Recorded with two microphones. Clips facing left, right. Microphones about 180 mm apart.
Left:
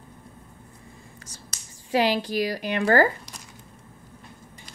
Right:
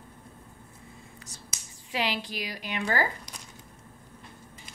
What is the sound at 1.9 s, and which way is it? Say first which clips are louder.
A woman's voice: left 9 dB; 40° left (ahead or behind).